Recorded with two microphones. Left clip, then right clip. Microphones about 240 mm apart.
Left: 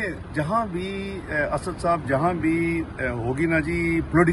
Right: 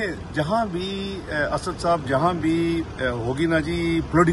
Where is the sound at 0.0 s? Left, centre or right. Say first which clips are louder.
Right 2 dB; centre.